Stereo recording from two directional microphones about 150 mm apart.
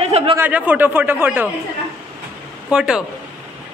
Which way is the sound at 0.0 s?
40° right (ahead or behind).